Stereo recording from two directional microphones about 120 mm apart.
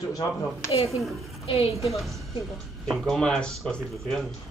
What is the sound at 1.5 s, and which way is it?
Speech, 50° left (ahead or behind).